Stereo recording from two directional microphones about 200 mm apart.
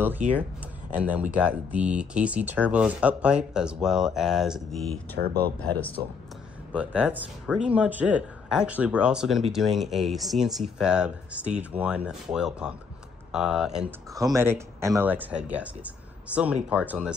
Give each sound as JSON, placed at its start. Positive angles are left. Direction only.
{"t": 0.2, "sound": "speech", "side_deg": -35}
{"t": 0.9, "sound": "speech", "side_deg": -5}
{"t": 5.2, "sound": "speech", "side_deg": -50}
{"t": 6.7, "sound": "speech", "side_deg": -5}
{"t": 14.1, "sound": "speech", "side_deg": -15}